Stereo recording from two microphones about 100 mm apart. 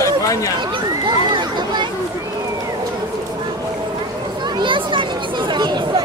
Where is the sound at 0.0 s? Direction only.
35° left (ahead or behind).